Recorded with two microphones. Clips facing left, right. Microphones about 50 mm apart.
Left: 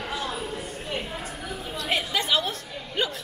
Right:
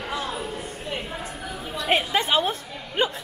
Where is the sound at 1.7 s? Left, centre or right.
Right.